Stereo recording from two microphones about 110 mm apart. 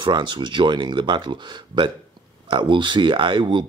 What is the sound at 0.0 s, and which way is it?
Speech, 45° right (ahead or behind).